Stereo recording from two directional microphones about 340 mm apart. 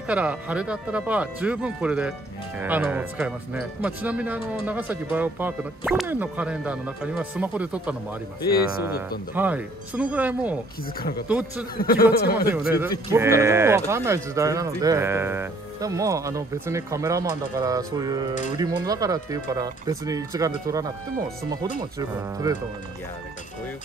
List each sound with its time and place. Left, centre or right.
0.1 s speech: centre
9.3 s speech: centre
11.0 s a man's voice: left
11.2 s speech: centre
11.7 s a man's voice: left
13.1 s speech: centre